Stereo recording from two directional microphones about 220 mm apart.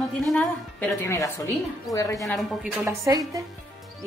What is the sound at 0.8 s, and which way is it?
A woman's voice, 15° left (ahead or behind).